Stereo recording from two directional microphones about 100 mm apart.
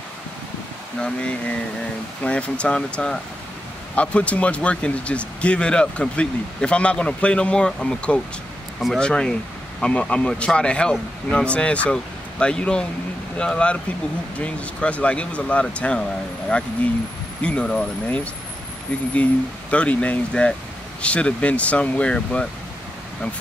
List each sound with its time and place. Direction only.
0.9 s speech: 10° left (ahead or behind)
19.7 s speech: 15° left (ahead or behind)